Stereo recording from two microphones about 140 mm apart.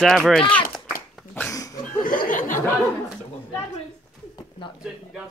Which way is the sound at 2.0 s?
80° left.